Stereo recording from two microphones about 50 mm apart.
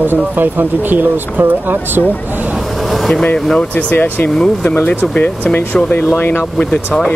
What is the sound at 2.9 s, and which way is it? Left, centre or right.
Air conditioning, centre.